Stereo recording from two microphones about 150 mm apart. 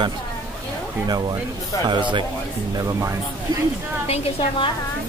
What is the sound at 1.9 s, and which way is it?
Speech, 30° right (ahead or behind).